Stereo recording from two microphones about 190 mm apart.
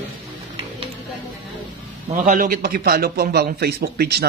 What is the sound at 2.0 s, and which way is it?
A man's voice, 45° right (ahead or behind).